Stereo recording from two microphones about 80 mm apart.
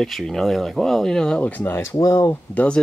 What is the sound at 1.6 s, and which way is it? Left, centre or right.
Speech, left.